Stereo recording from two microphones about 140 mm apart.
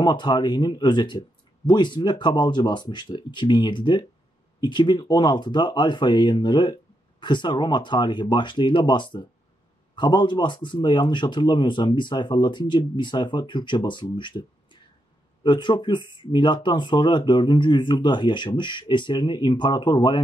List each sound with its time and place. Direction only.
0.0 s speech: 30° left (ahead or behind)